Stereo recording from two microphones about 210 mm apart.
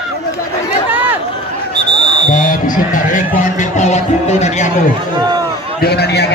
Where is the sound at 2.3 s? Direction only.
40° left (ahead or behind).